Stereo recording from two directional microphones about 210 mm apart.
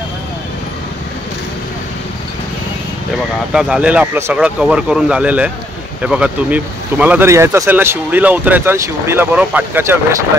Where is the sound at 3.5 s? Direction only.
5° right (ahead or behind).